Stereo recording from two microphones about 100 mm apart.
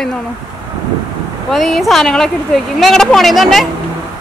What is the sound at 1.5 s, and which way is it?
Speech, centre (ahead or behind).